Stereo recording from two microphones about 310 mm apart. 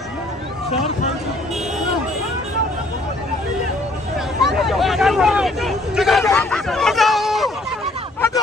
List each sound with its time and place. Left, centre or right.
4.4 s hubbub: centre